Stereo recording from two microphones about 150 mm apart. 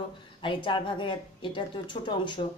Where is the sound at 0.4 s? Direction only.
35° left (ahead or behind).